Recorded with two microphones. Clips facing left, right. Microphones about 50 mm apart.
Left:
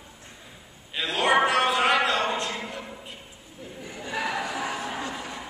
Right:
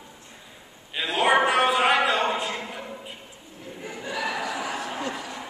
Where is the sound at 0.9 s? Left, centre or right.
Centre.